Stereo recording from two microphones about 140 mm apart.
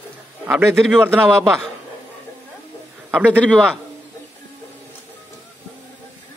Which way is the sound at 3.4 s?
5° left (ahead or behind).